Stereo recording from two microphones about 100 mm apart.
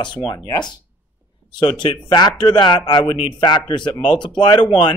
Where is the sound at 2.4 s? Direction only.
50° left (ahead or behind).